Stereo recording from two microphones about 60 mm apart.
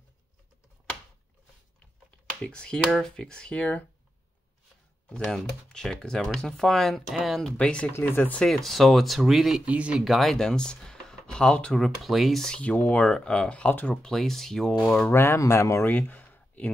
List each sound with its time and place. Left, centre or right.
2.4 s speech: centre
5.1 s speech: centre
7.4 s speech: centre
8.5 s speech: centre
9.7 s speech: right
9.9 s speech: centre
11.7 s speech: centre
12.4 s speech: left
13.7 s speech: left
14.0 s speech: centre
15.0 s speech: left
15.9 s a sound: left